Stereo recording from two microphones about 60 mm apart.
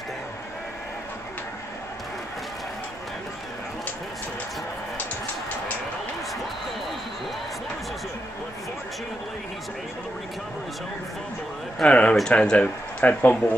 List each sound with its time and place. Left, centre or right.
11.8 s speech: centre
13.2 s speech: left